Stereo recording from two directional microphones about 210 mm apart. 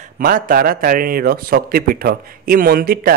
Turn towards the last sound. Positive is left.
turn(degrees=-45)  # may be behind; listen again after turning